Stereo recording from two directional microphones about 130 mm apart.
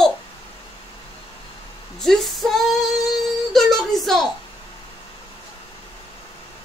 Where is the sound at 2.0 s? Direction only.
Centre (ahead or behind).